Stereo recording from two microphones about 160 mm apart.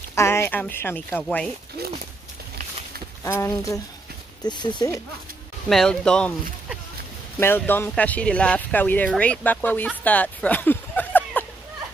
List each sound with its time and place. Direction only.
0.1 s speech: 15° left (ahead or behind)
3.3 s speech: 20° left (ahead or behind)
5.7 s speech: 5° left (ahead or behind)
10.0 s a sound: 10° left (ahead or behind)